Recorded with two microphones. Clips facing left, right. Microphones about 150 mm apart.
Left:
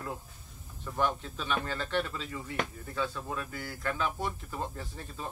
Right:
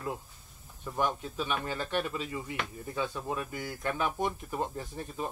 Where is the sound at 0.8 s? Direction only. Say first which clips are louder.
Even; 10° right (ahead or behind).